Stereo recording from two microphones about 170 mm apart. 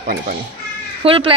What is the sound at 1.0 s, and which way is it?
Speech, 35° right (ahead or behind).